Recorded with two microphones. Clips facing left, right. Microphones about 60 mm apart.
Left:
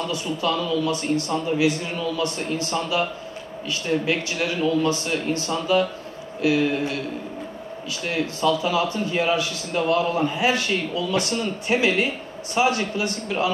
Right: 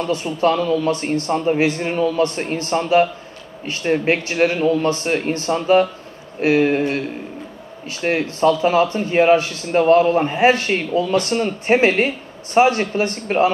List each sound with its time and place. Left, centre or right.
0.0 s a man's voice: right
8.0 s a man's voice: right